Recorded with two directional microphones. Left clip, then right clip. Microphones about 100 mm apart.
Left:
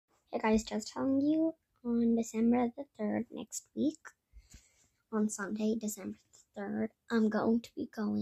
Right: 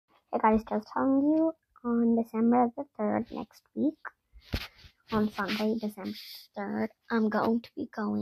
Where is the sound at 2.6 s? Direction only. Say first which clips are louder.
Right 7 dB; 5° left (ahead or behind).